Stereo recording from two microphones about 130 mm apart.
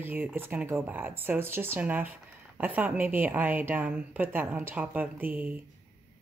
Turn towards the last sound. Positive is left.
turn(degrees=-15)  # may be behind; listen again after turning